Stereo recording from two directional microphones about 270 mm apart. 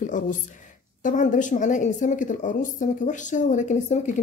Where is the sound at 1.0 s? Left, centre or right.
Left.